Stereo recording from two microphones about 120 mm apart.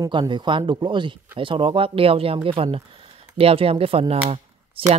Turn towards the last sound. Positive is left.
turn(degrees=-50)  # may be behind; listen again after turning